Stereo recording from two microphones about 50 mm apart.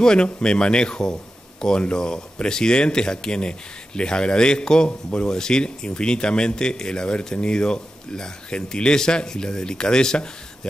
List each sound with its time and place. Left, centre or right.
0.0 s speech: centre